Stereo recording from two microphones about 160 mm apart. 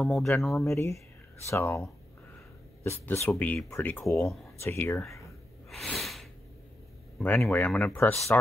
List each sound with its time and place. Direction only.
0.0 s speech: centre (ahead or behind)
0.7 s speech: 20° left (ahead or behind)
5.7 s snort: centre (ahead or behind)
7.2 s speech: 5° left (ahead or behind)